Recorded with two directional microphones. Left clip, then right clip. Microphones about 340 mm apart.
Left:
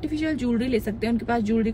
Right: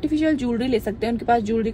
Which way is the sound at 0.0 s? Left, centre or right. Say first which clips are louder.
Right 5 dB; centre.